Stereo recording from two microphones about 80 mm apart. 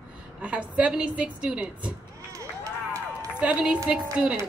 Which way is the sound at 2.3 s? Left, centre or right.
Right.